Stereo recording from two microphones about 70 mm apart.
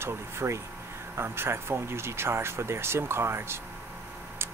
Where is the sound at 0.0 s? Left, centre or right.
Right.